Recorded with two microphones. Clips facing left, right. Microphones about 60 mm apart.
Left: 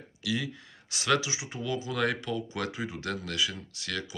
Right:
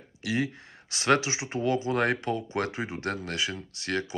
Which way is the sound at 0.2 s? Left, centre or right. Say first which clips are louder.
Right 3 dB; right.